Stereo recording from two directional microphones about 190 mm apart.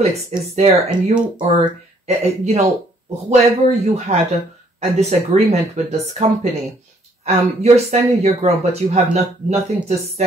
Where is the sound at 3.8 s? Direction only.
35° right (ahead or behind).